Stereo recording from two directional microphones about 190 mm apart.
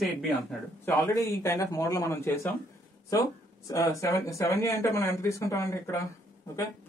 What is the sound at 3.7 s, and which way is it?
Speech, 15° left (ahead or behind).